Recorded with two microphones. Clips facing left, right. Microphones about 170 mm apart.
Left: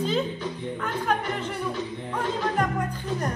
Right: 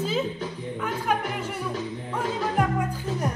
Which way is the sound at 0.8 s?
10° right (ahead or behind).